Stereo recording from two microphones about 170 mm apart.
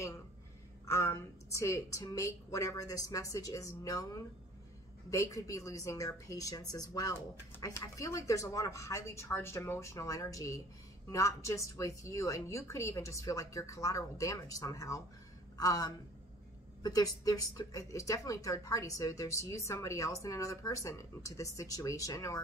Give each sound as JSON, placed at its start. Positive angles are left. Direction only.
{"t": 0.8, "sound": "a woman's voice", "side_deg": 15}